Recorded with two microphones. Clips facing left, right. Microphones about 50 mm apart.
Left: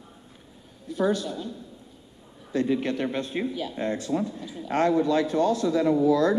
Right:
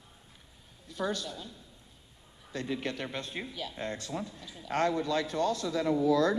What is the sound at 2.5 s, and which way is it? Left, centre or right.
A man's voice, left.